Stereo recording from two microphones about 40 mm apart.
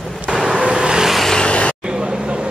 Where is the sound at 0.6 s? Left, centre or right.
Right.